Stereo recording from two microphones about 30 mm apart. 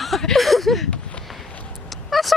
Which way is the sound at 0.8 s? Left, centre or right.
Left.